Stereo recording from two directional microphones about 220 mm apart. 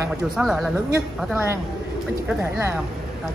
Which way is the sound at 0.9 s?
10° right (ahead or behind).